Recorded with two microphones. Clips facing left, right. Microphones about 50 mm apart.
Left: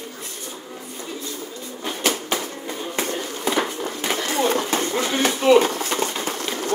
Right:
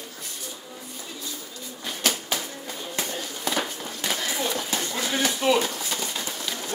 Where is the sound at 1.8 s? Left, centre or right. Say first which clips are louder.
Left 4 dB; left.